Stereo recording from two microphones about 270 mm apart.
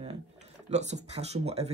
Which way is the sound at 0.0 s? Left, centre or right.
Right.